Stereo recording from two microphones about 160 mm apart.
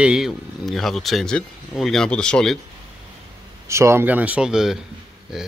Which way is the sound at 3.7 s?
15° right (ahead or behind).